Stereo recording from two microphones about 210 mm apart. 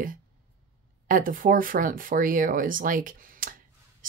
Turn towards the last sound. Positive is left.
turn(degrees=-40)  # may be behind; listen again after turning